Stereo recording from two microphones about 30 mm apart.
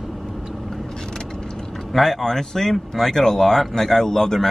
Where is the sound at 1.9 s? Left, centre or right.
Centre.